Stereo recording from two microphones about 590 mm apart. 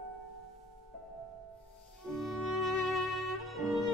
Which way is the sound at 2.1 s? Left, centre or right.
Centre.